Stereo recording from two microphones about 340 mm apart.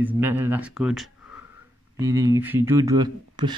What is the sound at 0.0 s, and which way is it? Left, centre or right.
Speech, centre.